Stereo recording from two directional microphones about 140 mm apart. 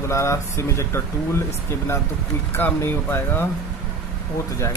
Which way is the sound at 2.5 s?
15° left (ahead or behind).